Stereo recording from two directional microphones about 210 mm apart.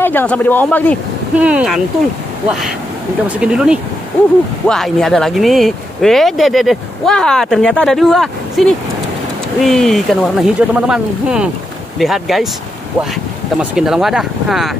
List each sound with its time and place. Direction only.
0.0 s a man's voice: 10° left (ahead or behind)
1.4 s speech: 5° right (ahead or behind)
3.3 s speech: 5° right (ahead or behind)
13.6 s speech: 5° right (ahead or behind)